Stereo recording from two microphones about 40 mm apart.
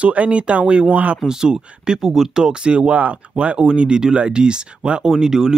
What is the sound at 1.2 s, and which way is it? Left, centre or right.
Speech, centre.